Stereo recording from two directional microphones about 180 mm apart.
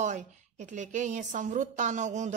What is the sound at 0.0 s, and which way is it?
Speech, 40° right (ahead or behind).